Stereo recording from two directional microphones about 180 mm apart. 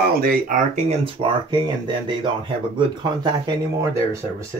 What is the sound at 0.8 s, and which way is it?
Speech, 30° right (ahead or behind).